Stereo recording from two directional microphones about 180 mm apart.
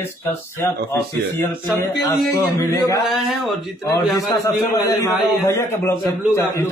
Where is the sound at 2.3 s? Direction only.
15° left (ahead or behind).